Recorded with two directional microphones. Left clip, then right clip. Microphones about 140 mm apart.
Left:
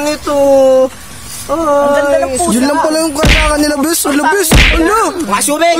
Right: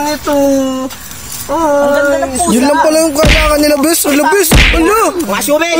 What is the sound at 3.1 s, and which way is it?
Music, centre (ahead or behind).